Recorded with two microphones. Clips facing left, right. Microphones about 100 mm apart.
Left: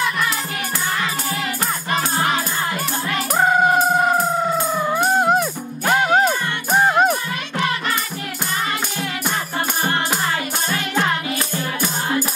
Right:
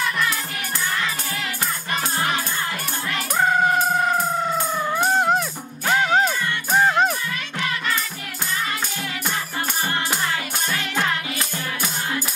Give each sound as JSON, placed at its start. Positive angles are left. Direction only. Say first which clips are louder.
{"t": 1.9, "sound": "music", "louder": "left 4 dB", "side_deg": 35}
{"t": 3.4, "sound": "music", "louder": "left 3 dB", "side_deg": 15}
{"t": 10.7, "sound": "music", "louder": "left 3 dB", "side_deg": 35}